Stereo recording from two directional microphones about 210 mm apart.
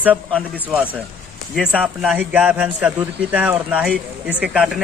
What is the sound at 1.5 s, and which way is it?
A man's voice, 5° right (ahead or behind).